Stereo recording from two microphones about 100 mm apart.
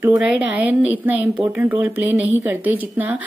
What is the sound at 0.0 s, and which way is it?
Speech, 15° right (ahead or behind).